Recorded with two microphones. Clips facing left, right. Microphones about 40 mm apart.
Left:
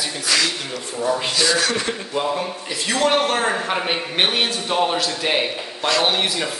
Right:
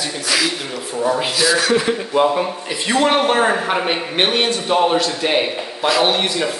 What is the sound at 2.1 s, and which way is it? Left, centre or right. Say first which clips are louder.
A man's voice: right 7 dB; centre.